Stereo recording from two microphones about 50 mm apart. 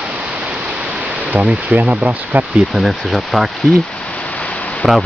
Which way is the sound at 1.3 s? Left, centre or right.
Right.